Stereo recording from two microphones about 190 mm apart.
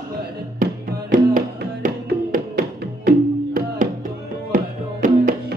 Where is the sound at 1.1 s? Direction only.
45° right (ahead or behind).